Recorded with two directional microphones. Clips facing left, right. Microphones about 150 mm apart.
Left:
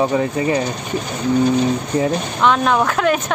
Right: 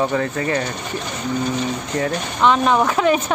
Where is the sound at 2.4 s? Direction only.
Centre (ahead or behind).